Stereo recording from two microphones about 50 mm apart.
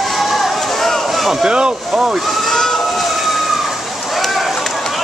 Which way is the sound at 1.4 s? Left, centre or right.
Centre.